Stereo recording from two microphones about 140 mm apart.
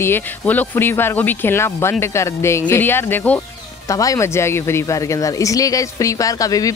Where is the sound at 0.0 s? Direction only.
15° left (ahead or behind).